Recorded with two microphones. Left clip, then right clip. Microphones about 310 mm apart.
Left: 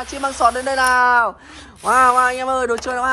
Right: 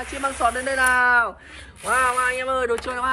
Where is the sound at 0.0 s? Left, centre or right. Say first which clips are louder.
Left 5 dB; centre.